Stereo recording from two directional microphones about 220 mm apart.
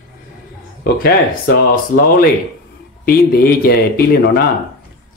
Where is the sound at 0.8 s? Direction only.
45° left (ahead or behind).